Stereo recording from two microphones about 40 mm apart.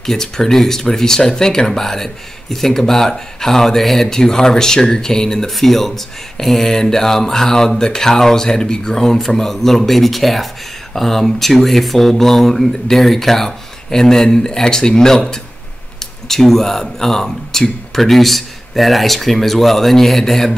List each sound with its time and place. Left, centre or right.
0.0 s speech: centre
5.6 s speech: centre